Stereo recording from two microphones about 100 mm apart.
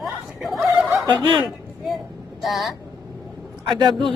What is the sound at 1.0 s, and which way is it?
Fowl, 50° right (ahead or behind).